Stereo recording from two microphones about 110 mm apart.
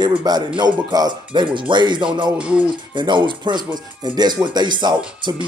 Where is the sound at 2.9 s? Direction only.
45° right (ahead or behind).